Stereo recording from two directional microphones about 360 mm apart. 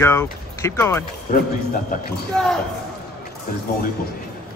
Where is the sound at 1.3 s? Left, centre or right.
Left.